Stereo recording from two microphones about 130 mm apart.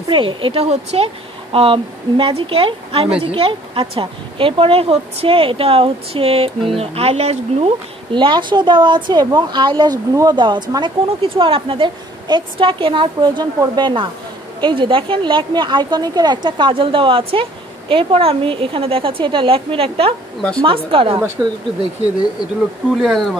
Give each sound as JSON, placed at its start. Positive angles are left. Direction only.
{"t": 0.1, "sound": "a woman's voice", "side_deg": -40}
{"t": 8.1, "sound": "a woman's voice", "side_deg": -40}
{"t": 20.3, "sound": "a woman's voice", "side_deg": 5}
{"t": 20.6, "sound": "a woman's voice", "side_deg": -45}
{"t": 21.4, "sound": "speech", "side_deg": -5}
{"t": 22.8, "sound": "speech", "side_deg": 0}